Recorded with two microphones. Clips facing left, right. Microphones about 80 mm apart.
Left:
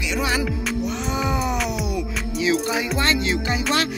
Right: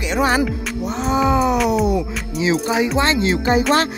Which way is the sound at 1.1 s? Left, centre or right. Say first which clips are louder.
Right 9 dB; right.